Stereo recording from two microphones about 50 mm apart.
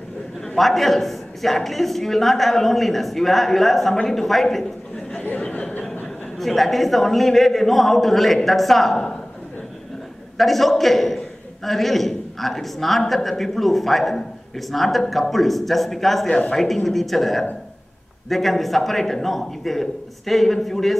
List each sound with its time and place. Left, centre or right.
0.6 s a man's voice: centre
6.3 s a man's voice: centre
10.3 s a man's voice: centre
16.3 s speech: centre
16.5 s a man's voice: centre